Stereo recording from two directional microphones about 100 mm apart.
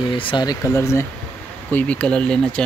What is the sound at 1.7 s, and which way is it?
Speech, 10° left (ahead or behind).